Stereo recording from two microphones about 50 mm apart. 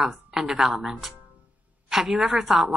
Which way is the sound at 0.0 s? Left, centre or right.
Centre.